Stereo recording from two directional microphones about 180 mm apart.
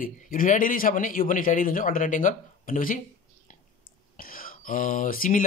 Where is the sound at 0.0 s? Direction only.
50° left (ahead or behind).